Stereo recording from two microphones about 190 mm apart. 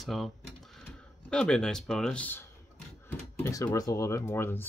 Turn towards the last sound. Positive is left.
turn(degrees=10)  # may be behind; listen again after turning